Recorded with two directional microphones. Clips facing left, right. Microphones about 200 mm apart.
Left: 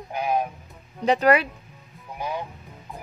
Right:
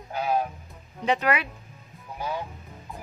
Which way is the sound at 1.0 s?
35° left (ahead or behind).